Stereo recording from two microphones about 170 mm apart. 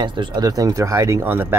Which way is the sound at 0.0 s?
25° right (ahead or behind).